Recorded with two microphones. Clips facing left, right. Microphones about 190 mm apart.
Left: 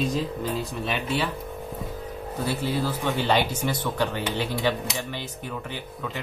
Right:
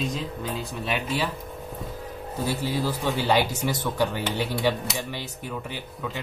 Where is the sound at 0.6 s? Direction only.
5° right (ahead or behind).